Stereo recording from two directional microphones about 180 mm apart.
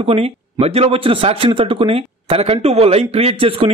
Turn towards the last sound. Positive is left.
turn(degrees=-30)  # may be behind; listen again after turning